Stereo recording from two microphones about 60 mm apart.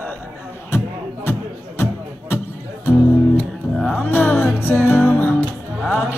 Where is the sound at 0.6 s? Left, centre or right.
Left.